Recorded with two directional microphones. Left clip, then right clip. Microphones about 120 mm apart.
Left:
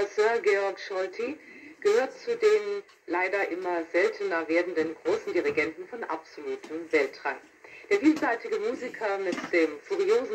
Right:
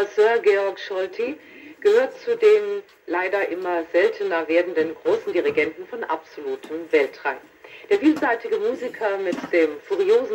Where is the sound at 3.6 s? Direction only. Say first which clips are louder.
Right 7 dB; 25° right (ahead or behind).